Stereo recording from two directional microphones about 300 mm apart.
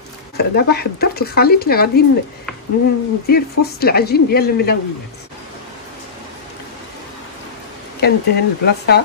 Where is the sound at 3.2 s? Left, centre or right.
Left.